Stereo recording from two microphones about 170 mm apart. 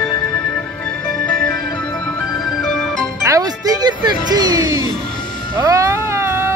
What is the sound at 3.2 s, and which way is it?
Music, 20° right (ahead or behind).